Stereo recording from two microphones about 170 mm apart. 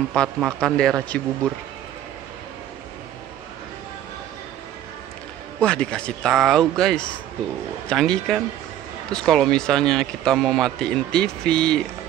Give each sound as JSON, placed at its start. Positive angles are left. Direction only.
{"t": 0.1, "sound": "speech", "side_deg": 5}
{"t": 5.6, "sound": "speech", "side_deg": 5}